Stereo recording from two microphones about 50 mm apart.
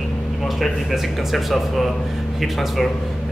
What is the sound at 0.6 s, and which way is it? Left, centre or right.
A man's voice, centre.